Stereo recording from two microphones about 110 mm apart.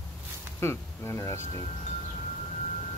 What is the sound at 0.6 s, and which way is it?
Speech, 25° left (ahead or behind).